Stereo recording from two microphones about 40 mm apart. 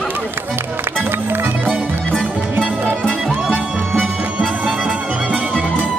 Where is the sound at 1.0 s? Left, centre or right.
Right.